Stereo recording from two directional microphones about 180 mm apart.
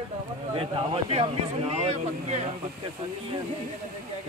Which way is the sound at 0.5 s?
30° right (ahead or behind).